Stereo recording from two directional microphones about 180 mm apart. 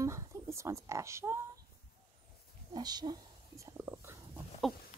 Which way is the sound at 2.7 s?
25° right (ahead or behind).